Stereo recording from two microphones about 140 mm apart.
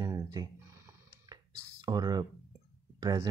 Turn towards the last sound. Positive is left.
turn(degrees=-30)  # may be behind; listen again after turning